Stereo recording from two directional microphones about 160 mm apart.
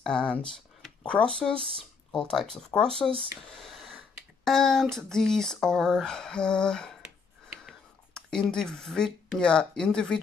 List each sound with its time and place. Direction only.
0.0 s speech: 5° left (ahead or behind)
3.5 s a sound: centre (ahead or behind)
4.5 s speech: 5° left (ahead or behind)